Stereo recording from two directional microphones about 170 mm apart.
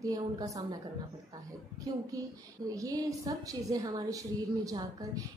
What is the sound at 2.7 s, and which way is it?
A woman's voice, 20° right (ahead or behind).